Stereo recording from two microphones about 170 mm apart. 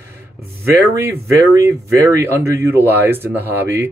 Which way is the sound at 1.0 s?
15° right (ahead or behind).